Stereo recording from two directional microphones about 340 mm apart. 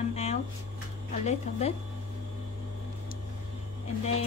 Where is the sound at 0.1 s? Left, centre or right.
Centre.